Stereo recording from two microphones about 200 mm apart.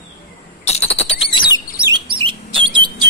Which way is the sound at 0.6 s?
30° left (ahead or behind).